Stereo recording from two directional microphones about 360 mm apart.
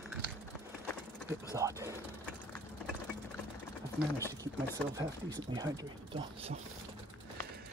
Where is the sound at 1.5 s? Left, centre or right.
Centre.